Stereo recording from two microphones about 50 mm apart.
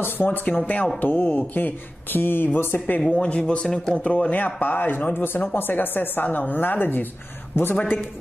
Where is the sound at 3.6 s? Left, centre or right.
Centre.